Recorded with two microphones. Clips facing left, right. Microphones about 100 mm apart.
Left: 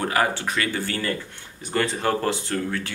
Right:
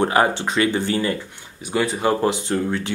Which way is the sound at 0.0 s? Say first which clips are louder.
Right 5 dB; 25° right (ahead or behind).